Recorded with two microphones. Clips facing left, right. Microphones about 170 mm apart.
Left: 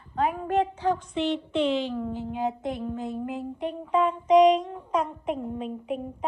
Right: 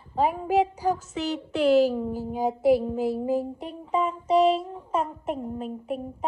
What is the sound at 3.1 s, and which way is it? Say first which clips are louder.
Speech: right 6 dB; 35° right (ahead or behind).